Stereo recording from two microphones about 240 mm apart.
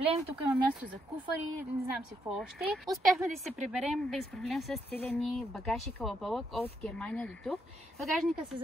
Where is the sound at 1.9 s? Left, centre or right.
Centre.